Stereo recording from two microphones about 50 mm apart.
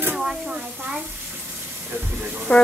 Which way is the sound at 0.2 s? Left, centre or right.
Centre.